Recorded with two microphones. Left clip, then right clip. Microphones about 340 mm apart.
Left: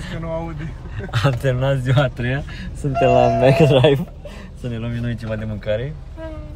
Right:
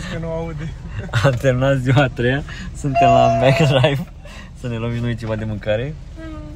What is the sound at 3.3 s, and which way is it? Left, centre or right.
Speech, right.